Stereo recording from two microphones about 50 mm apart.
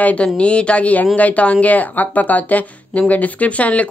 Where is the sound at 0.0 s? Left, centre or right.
Left.